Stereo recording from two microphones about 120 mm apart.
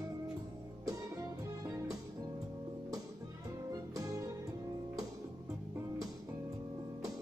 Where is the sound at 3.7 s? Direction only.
30° right (ahead or behind).